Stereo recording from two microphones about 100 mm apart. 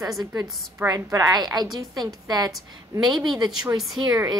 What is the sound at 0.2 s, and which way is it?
A woman's voice, 40° right (ahead or behind).